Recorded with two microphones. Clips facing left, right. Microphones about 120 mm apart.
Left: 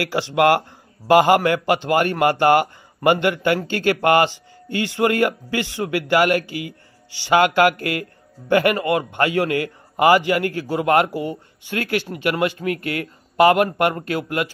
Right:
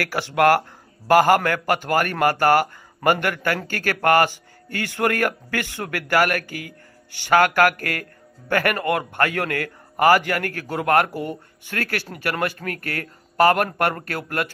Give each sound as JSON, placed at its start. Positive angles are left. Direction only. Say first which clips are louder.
{"t": 0.0, "sound": "a man's voice", "louder": "left 1 dB", "side_deg": 15}